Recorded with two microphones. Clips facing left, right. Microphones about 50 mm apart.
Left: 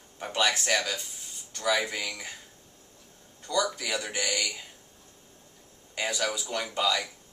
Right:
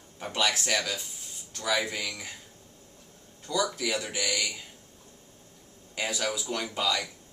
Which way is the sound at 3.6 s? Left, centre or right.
Centre.